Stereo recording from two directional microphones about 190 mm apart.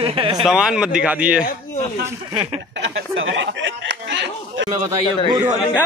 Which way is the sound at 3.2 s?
80° right.